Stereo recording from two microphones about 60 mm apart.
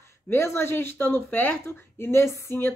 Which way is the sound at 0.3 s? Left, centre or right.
Left.